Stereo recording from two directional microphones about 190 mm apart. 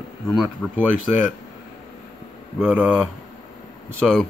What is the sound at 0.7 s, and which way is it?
Speech, 10° right (ahead or behind).